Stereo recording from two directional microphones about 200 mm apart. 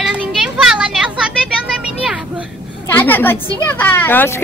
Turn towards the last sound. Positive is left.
turn(degrees=10)  # may be behind; listen again after turning